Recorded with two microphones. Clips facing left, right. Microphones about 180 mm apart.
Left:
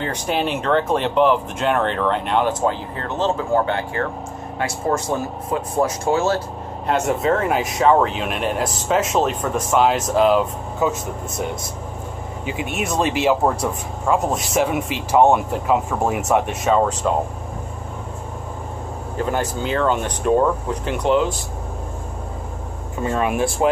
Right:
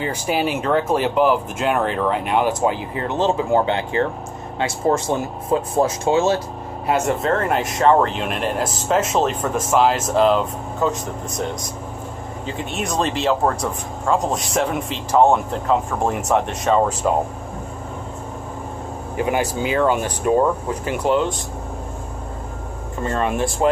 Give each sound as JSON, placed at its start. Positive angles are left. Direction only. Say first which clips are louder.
{"t": 0.0, "sound": "speech", "louder": "right 1 dB", "side_deg": -5}
{"t": 6.9, "sound": "speech", "louder": "even", "side_deg": 0}
{"t": 12.7, "sound": "speech", "louder": "left 1 dB", "side_deg": 5}
{"t": 19.1, "sound": "speech", "louder": "right 2 dB", "side_deg": -10}
{"t": 23.0, "sound": "speech", "louder": "left 1 dB", "side_deg": 5}